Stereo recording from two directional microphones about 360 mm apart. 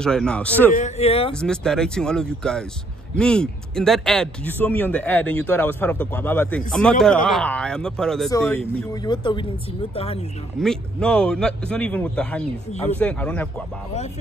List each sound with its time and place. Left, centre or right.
0.0 s speech: centre
0.7 s speech: centre
1.3 s speech: centre
10.6 s speech: centre